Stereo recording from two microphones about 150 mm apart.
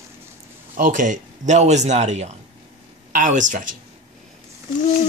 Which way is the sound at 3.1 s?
55° right (ahead or behind).